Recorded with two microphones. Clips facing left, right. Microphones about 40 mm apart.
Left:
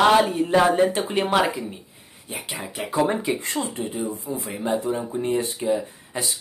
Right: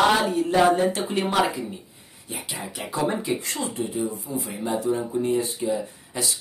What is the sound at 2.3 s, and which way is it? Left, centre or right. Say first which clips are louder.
Speech: left 2 dB; left.